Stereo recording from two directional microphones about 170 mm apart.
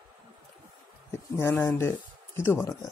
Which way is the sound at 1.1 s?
15° left (ahead or behind).